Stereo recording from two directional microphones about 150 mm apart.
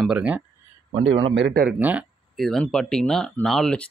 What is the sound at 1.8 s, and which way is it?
Speech, 10° right (ahead or behind).